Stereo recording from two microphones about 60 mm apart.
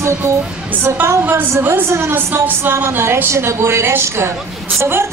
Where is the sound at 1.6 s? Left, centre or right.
Right.